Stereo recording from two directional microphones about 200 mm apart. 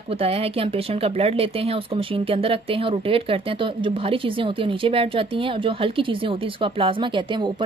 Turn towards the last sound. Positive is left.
turn(degrees=-25)  # may be behind; listen again after turning